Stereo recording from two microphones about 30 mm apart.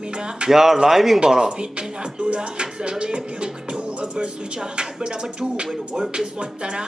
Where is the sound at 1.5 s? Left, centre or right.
Right.